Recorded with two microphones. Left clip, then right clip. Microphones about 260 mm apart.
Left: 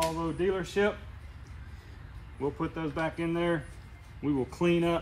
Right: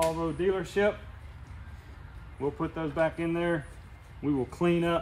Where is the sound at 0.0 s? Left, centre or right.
Centre.